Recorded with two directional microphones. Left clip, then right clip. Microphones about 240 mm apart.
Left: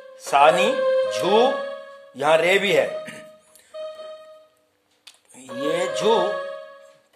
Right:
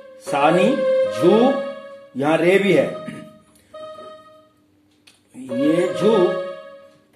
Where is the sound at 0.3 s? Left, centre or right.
Left.